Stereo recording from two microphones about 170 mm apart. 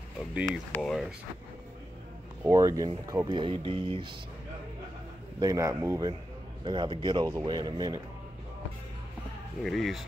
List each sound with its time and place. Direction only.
0.7 s speech: 5° left (ahead or behind)
2.4 s speech: 20° right (ahead or behind)
5.4 s speech: 20° right (ahead or behind)
9.6 s speech: centre (ahead or behind)